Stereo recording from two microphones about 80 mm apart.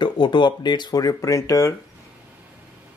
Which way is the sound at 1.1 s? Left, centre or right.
Left.